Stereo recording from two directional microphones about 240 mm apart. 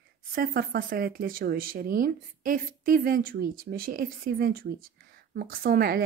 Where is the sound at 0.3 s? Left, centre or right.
Right.